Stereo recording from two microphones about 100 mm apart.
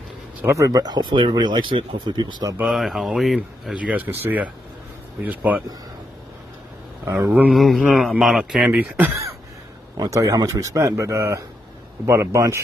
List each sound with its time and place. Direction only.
0.5 s speech: 35° right (ahead or behind)
2.6 s speech: centre (ahead or behind)
3.7 s speech: 15° right (ahead or behind)
7.2 s speech: 15° right (ahead or behind)
7.5 s speech: centre (ahead or behind); by 9.0 s 15° right (ahead or behind)
9.9 s a man's voice: 35° right (ahead or behind)